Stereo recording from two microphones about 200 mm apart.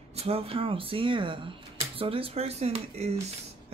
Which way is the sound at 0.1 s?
30° right (ahead or behind).